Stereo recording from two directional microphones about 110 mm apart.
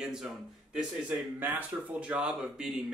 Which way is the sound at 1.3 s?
15° right (ahead or behind).